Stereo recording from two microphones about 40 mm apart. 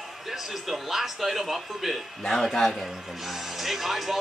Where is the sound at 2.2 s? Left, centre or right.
Centre.